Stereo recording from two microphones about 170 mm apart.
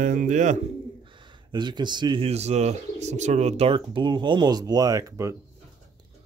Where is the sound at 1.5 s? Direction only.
25° right (ahead or behind).